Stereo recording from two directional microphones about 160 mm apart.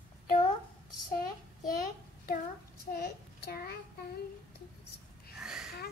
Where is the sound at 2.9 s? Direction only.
80° left.